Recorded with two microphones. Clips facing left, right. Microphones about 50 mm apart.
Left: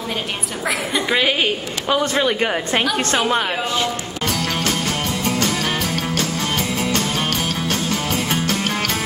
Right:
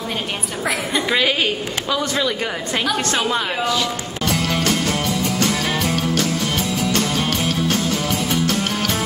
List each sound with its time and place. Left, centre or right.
0.7 s a woman's voice: centre
1.9 s speech: left
4.5 s music: left